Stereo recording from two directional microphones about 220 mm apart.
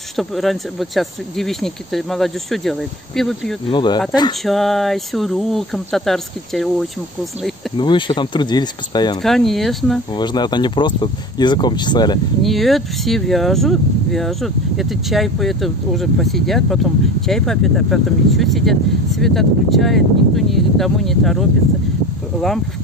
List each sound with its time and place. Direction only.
0.1 s speech: centre (ahead or behind)
3.6 s speech: 20° left (ahead or behind)
4.5 s speech: centre (ahead or behind)
7.7 s speech: 20° left (ahead or behind)
9.2 s speech: centre (ahead or behind)
10.1 s speech: 20° left (ahead or behind)
12.4 s speech: centre (ahead or behind)